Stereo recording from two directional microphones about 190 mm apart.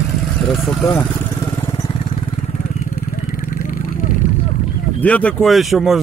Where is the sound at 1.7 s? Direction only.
25° left (ahead or behind).